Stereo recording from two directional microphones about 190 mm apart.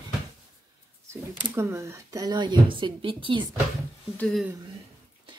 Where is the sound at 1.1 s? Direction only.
15° right (ahead or behind).